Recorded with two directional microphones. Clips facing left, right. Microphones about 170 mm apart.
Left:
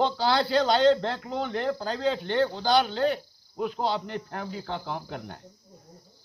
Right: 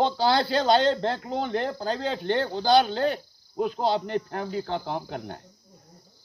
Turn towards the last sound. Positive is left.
turn(degrees=-35)  # may be behind; listen again after turning